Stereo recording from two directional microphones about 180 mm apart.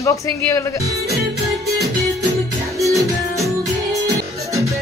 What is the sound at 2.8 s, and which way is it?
Music, 15° right (ahead or behind).